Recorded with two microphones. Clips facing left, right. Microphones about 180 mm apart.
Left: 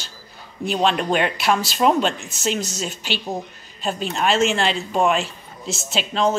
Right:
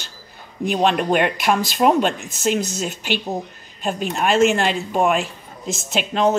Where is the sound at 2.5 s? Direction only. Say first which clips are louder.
Right 3 dB; 10° right (ahead or behind).